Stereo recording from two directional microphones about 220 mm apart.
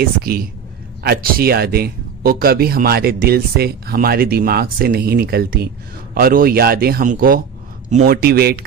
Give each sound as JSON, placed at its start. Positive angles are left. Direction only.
{"t": 0.0, "sound": "a man's voice", "side_deg": -45}